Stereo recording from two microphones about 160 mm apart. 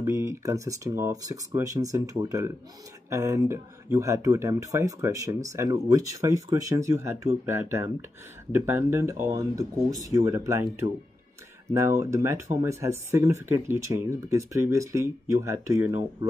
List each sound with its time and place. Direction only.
0.0 s speech: 15° right (ahead or behind)